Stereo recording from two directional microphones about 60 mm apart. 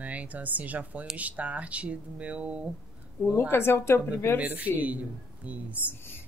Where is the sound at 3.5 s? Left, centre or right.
Left.